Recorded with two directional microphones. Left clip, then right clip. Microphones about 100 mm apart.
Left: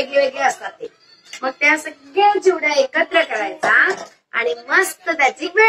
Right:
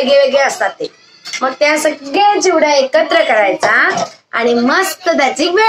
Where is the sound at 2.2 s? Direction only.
25° right (ahead or behind).